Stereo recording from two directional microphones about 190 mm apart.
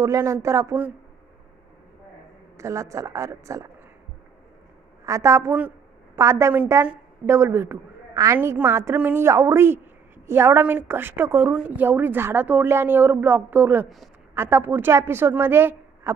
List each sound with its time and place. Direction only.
0.0 s a woman's voice: 15° right (ahead or behind)
2.5 s a woman's voice: 15° right (ahead or behind)
5.0 s a woman's voice: 15° right (ahead or behind)